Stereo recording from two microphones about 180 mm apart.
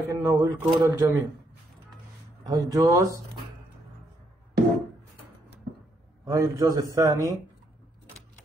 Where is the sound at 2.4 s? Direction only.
20° right (ahead or behind).